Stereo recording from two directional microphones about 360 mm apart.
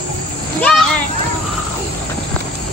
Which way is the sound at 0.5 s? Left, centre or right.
Centre.